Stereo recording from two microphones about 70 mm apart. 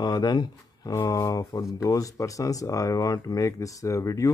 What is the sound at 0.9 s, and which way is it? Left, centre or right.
Speech, left.